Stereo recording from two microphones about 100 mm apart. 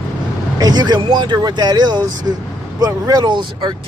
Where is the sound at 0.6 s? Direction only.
45° right (ahead or behind).